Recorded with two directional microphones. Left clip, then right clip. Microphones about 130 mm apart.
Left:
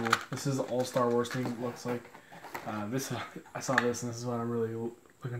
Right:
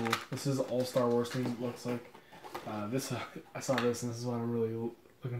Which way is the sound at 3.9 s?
10° right (ahead or behind).